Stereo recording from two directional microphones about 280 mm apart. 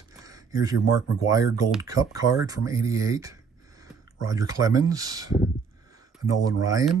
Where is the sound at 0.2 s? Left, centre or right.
Centre.